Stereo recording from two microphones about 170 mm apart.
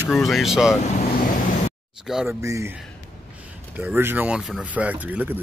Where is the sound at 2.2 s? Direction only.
15° right (ahead or behind).